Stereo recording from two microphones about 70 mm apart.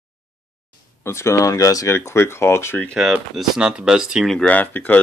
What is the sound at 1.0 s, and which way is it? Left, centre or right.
Speech, left.